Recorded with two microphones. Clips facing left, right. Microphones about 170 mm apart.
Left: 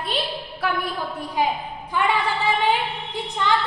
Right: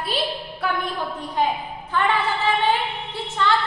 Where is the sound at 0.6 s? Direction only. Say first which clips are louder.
Even; 5° left (ahead or behind).